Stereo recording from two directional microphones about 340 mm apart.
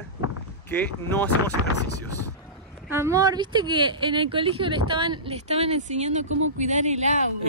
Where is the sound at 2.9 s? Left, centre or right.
Centre.